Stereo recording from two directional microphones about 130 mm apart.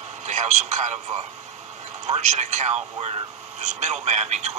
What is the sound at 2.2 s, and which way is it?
Speech, 65° right (ahead or behind).